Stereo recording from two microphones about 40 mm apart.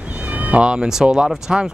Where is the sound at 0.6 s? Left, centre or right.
Right.